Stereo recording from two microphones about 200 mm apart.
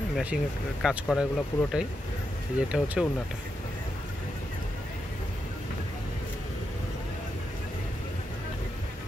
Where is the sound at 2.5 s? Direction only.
5° right (ahead or behind).